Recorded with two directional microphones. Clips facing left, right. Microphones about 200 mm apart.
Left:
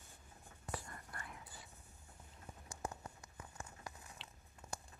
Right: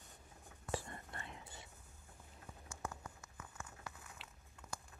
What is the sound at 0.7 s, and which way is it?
Whispering, 25° right (ahead or behind).